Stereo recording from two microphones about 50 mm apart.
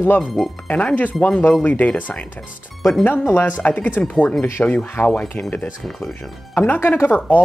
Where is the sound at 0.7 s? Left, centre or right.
Left.